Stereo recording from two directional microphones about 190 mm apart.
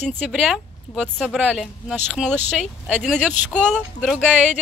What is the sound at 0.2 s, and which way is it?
Speech, 5° right (ahead or behind).